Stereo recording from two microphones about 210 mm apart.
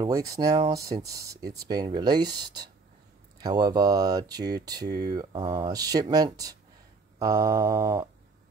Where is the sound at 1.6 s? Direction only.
20° right (ahead or behind).